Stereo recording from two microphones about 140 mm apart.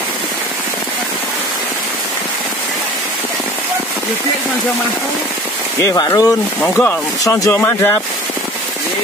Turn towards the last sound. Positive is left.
turn(degrees=15)  # may be behind; listen again after turning